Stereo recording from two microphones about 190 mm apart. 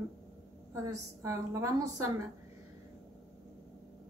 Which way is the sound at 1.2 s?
15° right (ahead or behind).